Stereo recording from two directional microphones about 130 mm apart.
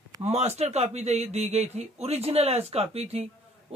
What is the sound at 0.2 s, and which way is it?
Speech, 55° right (ahead or behind).